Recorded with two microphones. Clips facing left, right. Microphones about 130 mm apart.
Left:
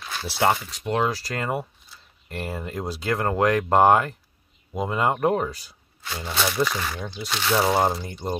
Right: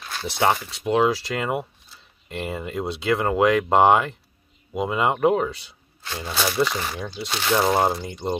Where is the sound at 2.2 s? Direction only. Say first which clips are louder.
Right 2 dB; centre (ahead or behind).